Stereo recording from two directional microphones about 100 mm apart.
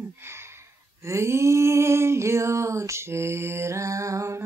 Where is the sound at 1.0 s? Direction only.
30° right (ahead or behind).